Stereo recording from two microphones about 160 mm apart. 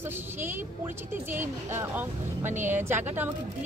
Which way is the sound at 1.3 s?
15° right (ahead or behind).